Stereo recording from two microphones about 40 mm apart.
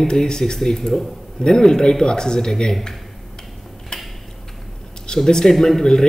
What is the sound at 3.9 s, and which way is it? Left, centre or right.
Tick-tock, left.